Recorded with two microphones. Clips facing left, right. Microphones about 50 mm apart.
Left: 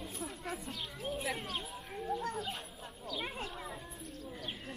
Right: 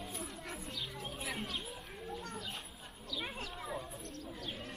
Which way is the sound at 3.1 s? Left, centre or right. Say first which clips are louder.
Left 2 dB; left.